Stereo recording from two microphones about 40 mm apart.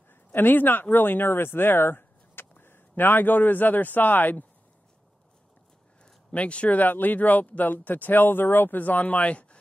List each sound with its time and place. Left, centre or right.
0.1 s speech: left
6.3 s speech: left